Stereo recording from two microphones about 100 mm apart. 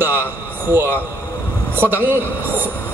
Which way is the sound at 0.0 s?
20° right (ahead or behind).